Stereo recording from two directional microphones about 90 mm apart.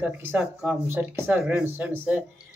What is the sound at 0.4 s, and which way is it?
Speech, 5° right (ahead or behind).